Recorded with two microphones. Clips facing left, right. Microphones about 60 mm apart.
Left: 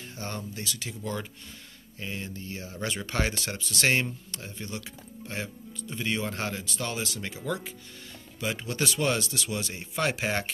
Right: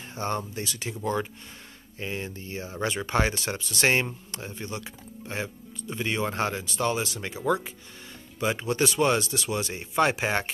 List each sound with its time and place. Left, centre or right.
0.1 s speech: right